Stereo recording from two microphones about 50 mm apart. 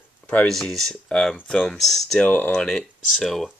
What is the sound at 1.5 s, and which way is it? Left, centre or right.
Speech, centre.